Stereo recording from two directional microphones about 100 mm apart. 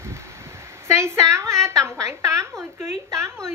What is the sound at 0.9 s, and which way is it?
A woman's voice, 30° right (ahead or behind).